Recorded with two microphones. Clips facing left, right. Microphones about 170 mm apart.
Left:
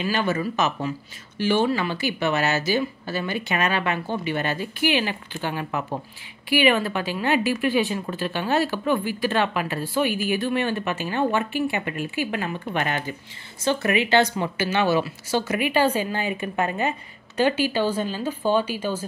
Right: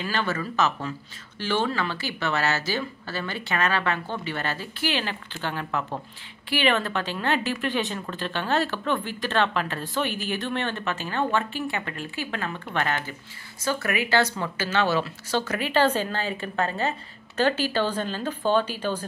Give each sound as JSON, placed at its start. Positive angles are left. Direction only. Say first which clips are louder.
{"t": 0.0, "sound": "a woman's voice", "louder": "left 4 dB", "side_deg": 15}